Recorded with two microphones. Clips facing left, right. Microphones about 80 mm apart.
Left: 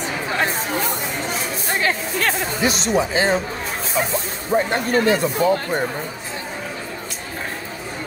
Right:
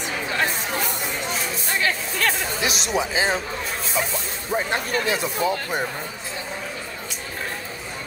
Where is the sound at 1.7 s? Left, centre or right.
Left.